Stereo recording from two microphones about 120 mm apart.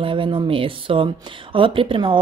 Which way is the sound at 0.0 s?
45° right (ahead or behind).